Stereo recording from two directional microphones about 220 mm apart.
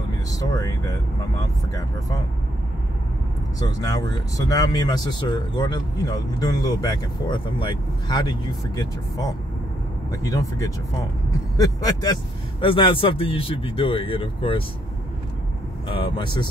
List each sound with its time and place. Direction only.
0.3 s speech: 15° left (ahead or behind)
3.5 s speech: 15° left (ahead or behind)
15.9 s speech: 20° left (ahead or behind)